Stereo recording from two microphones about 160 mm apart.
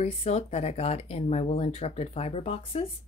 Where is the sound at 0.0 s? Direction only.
40° left (ahead or behind).